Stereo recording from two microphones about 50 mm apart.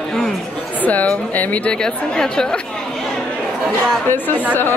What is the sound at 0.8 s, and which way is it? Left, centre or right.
Speech, left.